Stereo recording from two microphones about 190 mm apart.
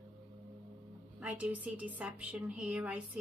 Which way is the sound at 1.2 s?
5° right (ahead or behind).